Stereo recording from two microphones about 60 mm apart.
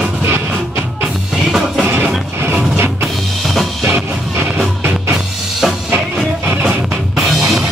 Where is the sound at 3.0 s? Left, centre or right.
Centre.